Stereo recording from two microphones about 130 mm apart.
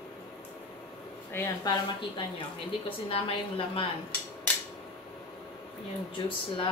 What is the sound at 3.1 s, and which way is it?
Speech, 45° left (ahead or behind).